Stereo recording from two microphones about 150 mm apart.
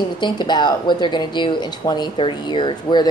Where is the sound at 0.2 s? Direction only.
30° left (ahead or behind).